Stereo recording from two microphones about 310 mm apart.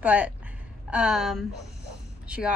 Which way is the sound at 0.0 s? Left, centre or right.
Centre.